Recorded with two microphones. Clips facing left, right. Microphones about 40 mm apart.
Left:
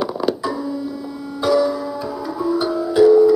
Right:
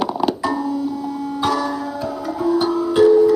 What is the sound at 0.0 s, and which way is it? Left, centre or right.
Music, centre.